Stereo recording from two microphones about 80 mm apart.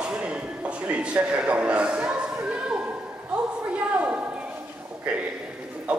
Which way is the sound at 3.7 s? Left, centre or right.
Centre.